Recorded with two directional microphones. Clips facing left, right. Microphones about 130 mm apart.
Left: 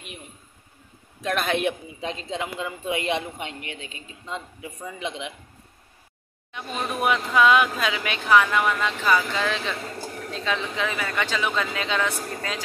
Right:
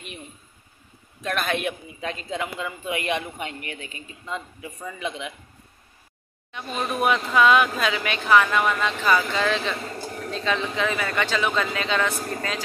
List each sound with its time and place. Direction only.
1.2 s a man's voice: centre (ahead or behind)
1.6 s a man's voice: 30° left (ahead or behind)
6.5 s speech: 10° left (ahead or behind)